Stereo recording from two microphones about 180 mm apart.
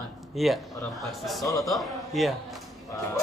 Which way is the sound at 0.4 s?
Centre (ahead or behind).